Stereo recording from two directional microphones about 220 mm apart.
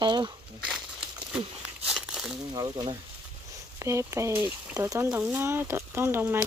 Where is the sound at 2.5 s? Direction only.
20° right (ahead or behind).